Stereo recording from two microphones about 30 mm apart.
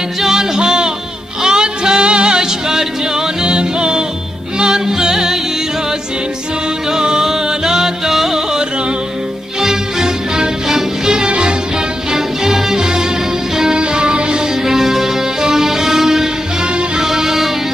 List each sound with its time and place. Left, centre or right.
0.2 s music: centre
3.4 s music: right
6.9 s music: right
9.6 s music: centre; by 11.5 s right
12.1 s music: centre
14.5 s music: centre
16.6 s music: right
17.0 s music: centre